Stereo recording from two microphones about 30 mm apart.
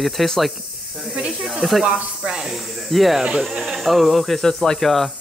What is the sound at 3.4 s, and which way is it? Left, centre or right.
Speech, centre.